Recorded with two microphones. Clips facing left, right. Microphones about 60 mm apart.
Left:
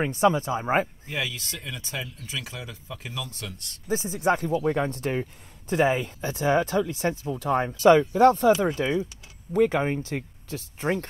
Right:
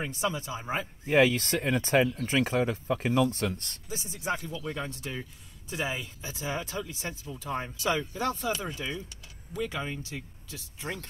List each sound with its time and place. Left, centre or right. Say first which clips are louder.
0.0 s speech: left 10 dB; left
1.0 s speech: right 9 dB; right
3.8 s speech: left 12 dB; left